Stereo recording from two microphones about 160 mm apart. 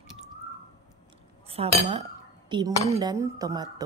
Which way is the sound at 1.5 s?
40° right (ahead or behind).